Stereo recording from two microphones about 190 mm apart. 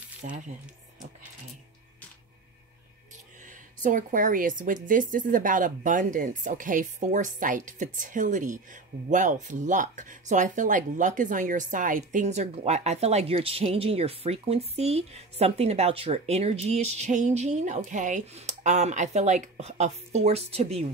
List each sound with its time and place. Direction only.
0.2 s speech: 40° right (ahead or behind)
3.8 s a woman's voice: 45° right (ahead or behind)